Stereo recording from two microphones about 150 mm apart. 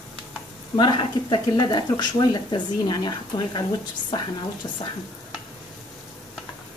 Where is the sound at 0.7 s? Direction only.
30° left (ahead or behind).